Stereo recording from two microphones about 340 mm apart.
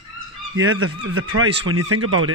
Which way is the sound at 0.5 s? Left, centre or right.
Right.